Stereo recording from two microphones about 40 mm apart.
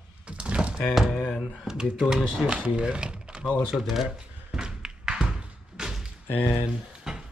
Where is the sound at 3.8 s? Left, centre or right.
Centre.